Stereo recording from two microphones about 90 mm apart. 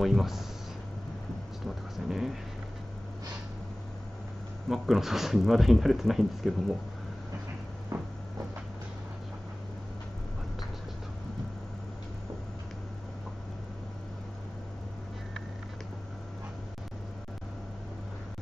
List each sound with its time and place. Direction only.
0.0 s speech: centre (ahead or behind)
2.0 s speech: 5° right (ahead or behind)
4.6 s speech: centre (ahead or behind)
7.9 s a sound: 35° right (ahead or behind)